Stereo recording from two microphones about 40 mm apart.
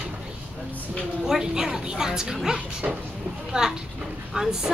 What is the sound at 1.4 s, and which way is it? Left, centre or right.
A woman's voice, centre.